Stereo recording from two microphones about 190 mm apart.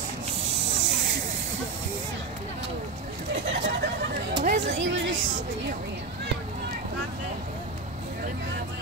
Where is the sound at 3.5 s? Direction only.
70° right (ahead or behind).